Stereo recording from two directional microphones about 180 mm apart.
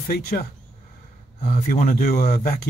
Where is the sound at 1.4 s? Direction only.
45° left (ahead or behind).